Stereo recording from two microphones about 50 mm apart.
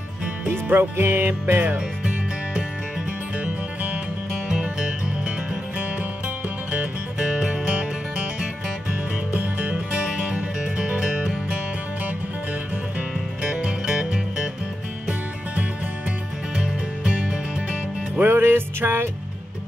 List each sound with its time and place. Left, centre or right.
0.5 s music: right
0.9 s music: right
1.4 s music: right
4.5 s music: centre
7.2 s music: centre
9.3 s music: right
9.9 s music: centre
13.4 s music: centre
16.5 s music: centre
18.2 s music: right